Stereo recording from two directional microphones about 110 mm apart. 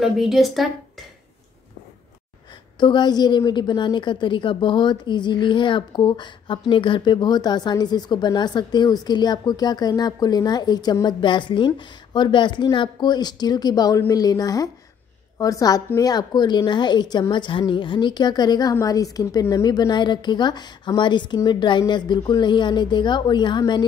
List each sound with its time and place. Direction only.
0.0 s a woman's voice: centre (ahead or behind)
2.8 s a woman's voice: 45° left (ahead or behind)